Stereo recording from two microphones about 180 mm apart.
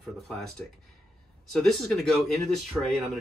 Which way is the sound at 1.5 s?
Centre (ahead or behind).